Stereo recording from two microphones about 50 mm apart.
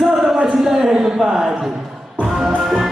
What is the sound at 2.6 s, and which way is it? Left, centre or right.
Music, centre.